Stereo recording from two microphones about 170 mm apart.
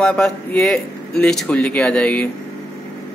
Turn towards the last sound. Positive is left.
turn(degrees=5)  # may be behind; listen again after turning